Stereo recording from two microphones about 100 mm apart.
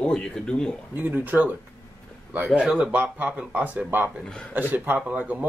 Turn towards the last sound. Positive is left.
turn(degrees=-15)  # may be behind; listen again after turning